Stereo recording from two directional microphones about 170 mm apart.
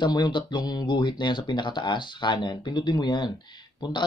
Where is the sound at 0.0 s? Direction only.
25° left (ahead or behind).